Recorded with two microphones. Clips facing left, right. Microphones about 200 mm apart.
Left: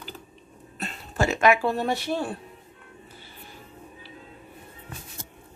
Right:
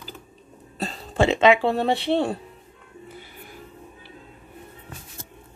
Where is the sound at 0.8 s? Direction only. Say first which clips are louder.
Right 5 dB; 25° right (ahead or behind).